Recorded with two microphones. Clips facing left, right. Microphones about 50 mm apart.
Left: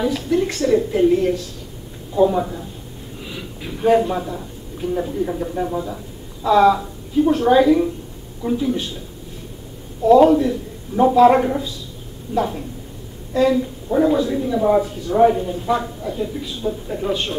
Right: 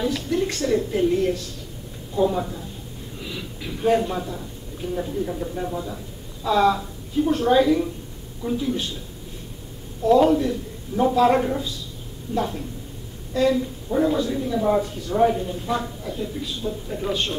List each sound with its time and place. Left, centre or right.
0.0 s a woman's voice: centre
10.0 s a woman's voice: centre